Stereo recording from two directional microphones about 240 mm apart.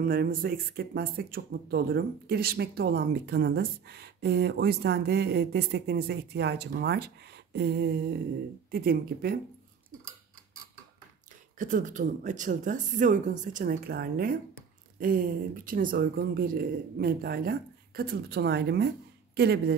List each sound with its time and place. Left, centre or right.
0.0 s speech: right
11.5 s speech: right